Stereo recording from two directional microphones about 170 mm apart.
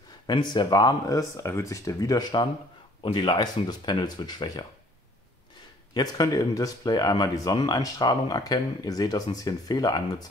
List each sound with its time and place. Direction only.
0.3 s speech: 25° left (ahead or behind)
5.9 s speech: 25° left (ahead or behind)